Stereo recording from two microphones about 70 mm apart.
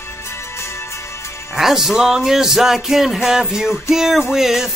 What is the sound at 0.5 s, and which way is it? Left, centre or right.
Music, left.